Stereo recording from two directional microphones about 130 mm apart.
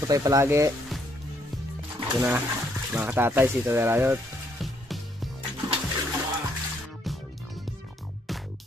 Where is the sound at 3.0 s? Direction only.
15° right (ahead or behind).